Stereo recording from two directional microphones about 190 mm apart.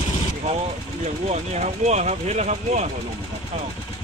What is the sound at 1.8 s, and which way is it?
Speech, 35° right (ahead or behind).